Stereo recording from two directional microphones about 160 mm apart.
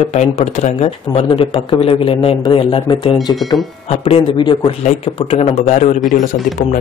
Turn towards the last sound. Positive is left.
turn(degrees=50)  # may be behind; listen again after turning